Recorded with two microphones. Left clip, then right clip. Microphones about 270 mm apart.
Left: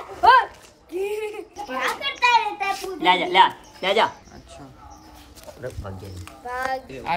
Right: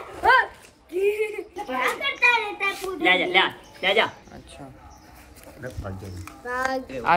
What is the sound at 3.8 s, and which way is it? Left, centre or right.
Speech, left.